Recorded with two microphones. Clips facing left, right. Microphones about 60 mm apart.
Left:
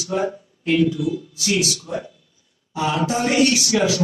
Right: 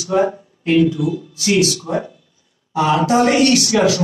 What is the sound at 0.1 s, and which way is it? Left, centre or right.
Speech, right.